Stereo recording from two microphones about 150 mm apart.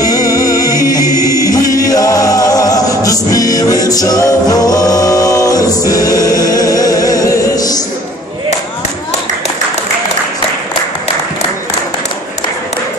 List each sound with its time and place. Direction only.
0.0 s music: 25° left (ahead or behind)
1.2 s singing: 25° left (ahead or behind)
1.8 s music: 25° left (ahead or behind)